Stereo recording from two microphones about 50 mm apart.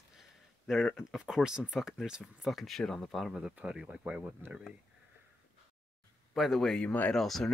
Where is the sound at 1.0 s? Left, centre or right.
Centre.